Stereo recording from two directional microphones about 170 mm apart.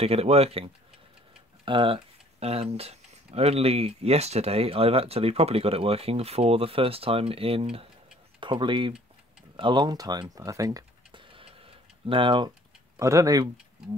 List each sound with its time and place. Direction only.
0.0 s speech: 35° right (ahead or behind)
10.3 s tick-tock: 20° right (ahead or behind)